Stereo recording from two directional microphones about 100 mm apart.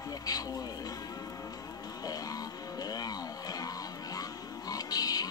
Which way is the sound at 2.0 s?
40° left (ahead or behind).